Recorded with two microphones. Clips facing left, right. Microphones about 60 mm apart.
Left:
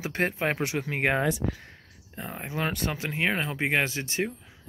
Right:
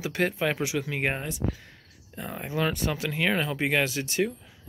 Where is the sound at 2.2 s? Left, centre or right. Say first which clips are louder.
Right 2 dB; centre.